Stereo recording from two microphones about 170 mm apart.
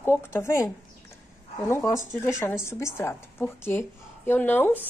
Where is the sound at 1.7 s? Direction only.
15° left (ahead or behind).